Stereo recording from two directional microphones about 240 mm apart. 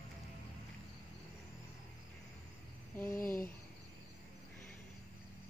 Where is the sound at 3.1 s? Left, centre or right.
Left.